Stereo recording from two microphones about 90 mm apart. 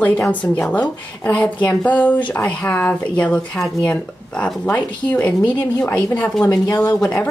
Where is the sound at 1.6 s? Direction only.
15° left (ahead or behind).